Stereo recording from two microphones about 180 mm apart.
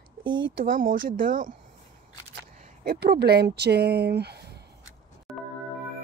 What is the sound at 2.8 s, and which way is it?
Speech, 65° right (ahead or behind).